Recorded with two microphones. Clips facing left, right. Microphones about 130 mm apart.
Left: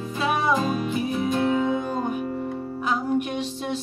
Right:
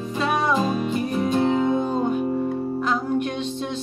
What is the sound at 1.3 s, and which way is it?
Music, 25° right (ahead or behind).